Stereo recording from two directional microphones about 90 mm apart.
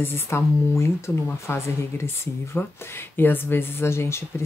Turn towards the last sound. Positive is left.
turn(degrees=30)  # may be behind; listen again after turning